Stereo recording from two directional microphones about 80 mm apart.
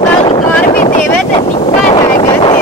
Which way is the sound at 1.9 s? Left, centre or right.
Left.